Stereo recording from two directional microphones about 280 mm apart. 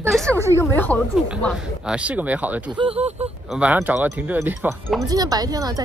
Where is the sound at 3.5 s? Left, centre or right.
Centre.